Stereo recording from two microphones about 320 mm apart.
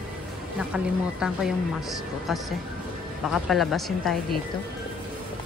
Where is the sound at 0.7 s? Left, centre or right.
Centre.